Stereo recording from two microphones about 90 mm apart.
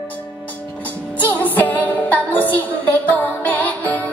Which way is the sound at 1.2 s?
20° left (ahead or behind).